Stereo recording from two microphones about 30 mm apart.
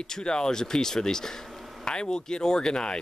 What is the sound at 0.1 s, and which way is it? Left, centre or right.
Speech, left.